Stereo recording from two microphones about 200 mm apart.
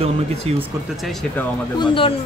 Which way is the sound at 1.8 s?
25° left (ahead or behind).